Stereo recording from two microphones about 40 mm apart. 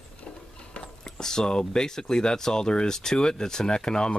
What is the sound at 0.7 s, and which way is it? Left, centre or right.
Speech, centre.